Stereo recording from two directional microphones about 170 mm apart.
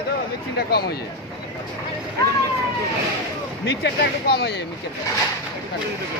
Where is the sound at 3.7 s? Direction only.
80° left.